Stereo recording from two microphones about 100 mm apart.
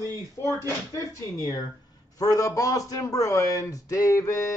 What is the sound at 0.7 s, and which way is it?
A man's voice, 30° left (ahead or behind).